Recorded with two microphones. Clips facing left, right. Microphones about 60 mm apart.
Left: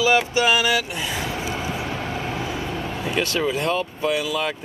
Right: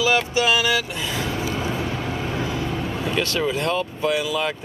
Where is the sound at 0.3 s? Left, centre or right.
Left.